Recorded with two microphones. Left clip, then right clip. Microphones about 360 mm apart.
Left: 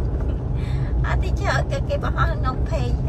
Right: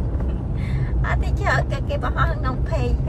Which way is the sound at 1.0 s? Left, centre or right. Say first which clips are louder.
Right 2 dB; centre.